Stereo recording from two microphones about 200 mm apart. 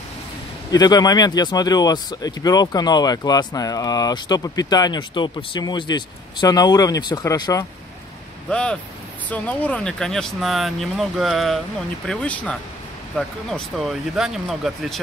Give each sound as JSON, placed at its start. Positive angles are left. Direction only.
{"t": 0.7, "sound": "speech", "side_deg": 20}
{"t": 8.5, "sound": "speech", "side_deg": 5}